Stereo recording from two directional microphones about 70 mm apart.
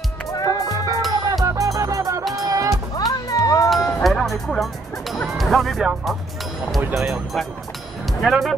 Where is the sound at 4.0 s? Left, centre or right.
Centre.